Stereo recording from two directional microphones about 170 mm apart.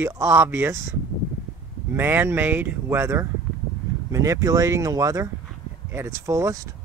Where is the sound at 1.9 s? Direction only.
15° right (ahead or behind).